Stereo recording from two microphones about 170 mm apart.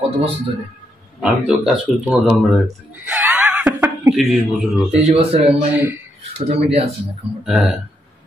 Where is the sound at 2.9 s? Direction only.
10° right (ahead or behind).